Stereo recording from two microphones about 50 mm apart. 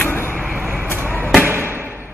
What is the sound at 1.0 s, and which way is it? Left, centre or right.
Music, right.